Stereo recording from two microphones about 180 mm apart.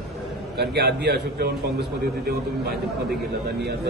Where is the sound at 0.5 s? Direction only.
65° right (ahead or behind).